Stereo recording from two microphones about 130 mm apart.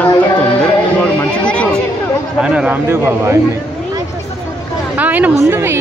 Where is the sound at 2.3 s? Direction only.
5° right (ahead or behind).